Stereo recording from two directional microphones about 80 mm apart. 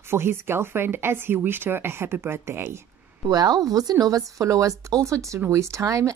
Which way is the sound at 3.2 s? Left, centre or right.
Right.